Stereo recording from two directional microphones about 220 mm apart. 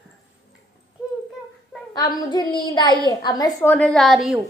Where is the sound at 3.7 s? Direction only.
5° left (ahead or behind).